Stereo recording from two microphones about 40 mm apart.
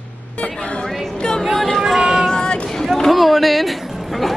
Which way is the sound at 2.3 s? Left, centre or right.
Left.